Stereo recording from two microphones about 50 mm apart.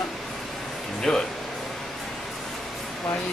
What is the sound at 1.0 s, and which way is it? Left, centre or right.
Speech, centre.